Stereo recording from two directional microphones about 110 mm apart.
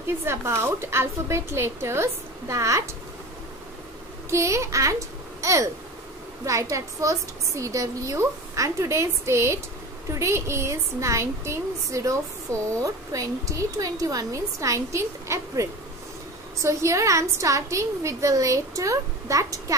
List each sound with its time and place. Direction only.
0.2 s a woman's voice: 25° right (ahead or behind)
4.3 s a child's voice: 25° right (ahead or behind)